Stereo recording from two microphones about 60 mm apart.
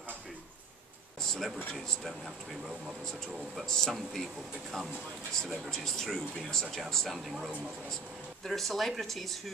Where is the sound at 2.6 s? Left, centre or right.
Centre.